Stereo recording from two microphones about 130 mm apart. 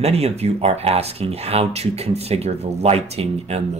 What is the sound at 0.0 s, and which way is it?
Speech, 55° right (ahead or behind).